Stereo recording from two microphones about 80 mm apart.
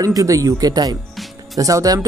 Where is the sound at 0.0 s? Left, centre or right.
Right.